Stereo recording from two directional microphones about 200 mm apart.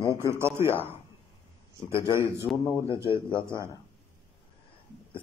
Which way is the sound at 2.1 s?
15° right (ahead or behind).